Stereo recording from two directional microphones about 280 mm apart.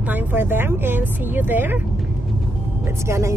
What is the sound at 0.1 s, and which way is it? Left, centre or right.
A woman's voice, centre.